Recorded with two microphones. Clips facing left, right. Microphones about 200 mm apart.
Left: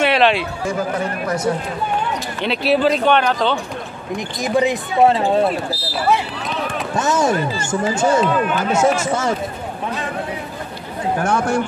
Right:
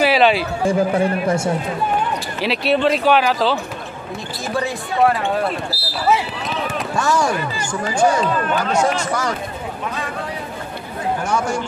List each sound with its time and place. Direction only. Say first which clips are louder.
0.0 s speech: right 1 dB; centre (ahead or behind)
0.7 s a man's voice: right 6 dB; 30° right (ahead or behind)
2.4 s speech: left 1 dB; centre (ahead or behind)
4.4 s speech: left 6 dB; 15° left (ahead or behind)
5.8 s basketball bounce: even; 5° right (ahead or behind)
7.0 s speech: left 2 dB; 20° left (ahead or behind)
8.2 s speech: left 2 dB; 5° left (ahead or behind)
11.2 s speech: left 4 dB; 55° left (ahead or behind)